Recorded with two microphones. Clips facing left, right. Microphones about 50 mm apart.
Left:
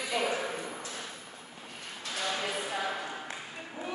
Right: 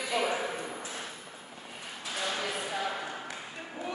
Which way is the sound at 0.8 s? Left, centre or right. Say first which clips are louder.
Right 1 dB; centre.